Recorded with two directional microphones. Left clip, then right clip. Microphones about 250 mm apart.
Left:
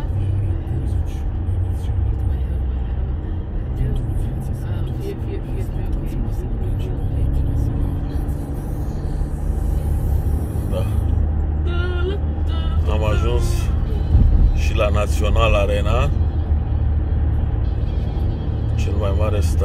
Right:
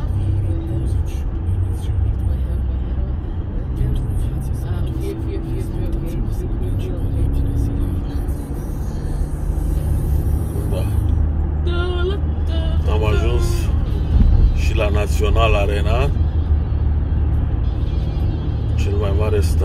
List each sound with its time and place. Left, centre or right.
12.9 s music: centre
14.6 s vehicle: centre
18.9 s vehicle: centre